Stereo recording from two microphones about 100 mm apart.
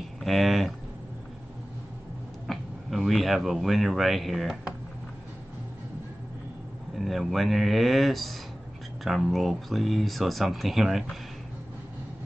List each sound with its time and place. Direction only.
0.2 s speech: centre (ahead or behind)
2.4 s speech: centre (ahead or behind)
7.0 s speech: centre (ahead or behind)